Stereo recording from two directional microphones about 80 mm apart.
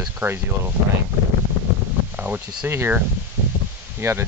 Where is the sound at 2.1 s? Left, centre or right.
Right.